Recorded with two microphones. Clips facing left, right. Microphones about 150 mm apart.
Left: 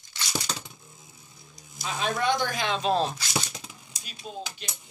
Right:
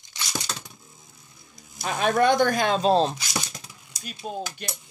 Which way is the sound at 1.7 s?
55° right (ahead or behind).